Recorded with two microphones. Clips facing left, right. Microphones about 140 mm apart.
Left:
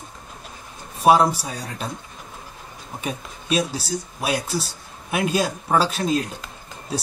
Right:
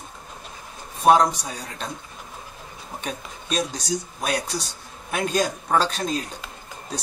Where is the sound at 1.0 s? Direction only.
5° left (ahead or behind).